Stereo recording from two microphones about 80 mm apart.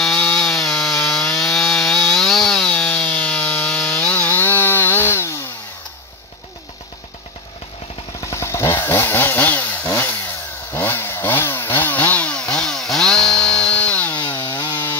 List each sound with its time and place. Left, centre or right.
0.0 s wood: centre
4.0 s chainsaw: left
8.2 s chainsaw: left; by 14.2 s centre
14.5 s chainsaw: left